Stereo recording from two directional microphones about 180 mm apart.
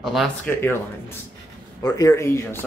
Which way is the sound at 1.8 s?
20° left (ahead or behind).